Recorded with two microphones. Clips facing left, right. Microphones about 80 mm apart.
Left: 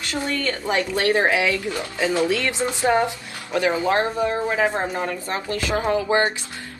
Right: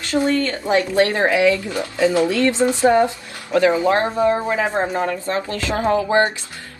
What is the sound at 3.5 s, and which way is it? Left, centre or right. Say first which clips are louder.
Speech: right 4 dB; right.